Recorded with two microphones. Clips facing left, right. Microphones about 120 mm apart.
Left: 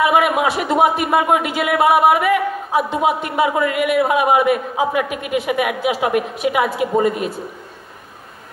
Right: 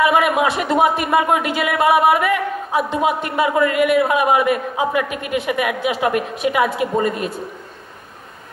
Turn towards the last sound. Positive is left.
turn(degrees=5)  # may be behind; listen again after turning